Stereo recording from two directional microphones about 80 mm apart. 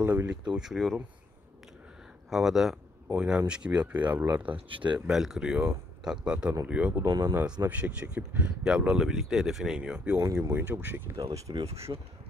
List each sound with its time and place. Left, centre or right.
0.0 s speech: right
0.3 s speech: centre
2.2 s speech: centre; by 4.6 s right
4.6 s speech: right
4.9 s speech: centre
7.1 s speech: right
7.6 s speech: centre
9.8 s speech: centre
10.2 s speech: right
10.5 s speech: right
11.5 s speech: right
11.9 s speech: right